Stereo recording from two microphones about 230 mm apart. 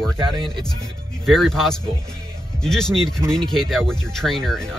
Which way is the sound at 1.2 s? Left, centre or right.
Centre.